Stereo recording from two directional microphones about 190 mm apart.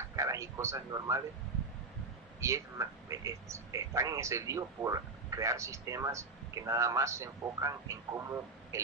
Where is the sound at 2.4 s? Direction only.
15° right (ahead or behind).